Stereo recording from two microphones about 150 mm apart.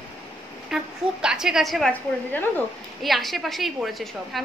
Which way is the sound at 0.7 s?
5° right (ahead or behind).